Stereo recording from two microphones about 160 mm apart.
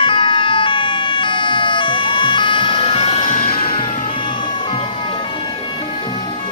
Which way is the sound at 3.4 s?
65° left (ahead or behind).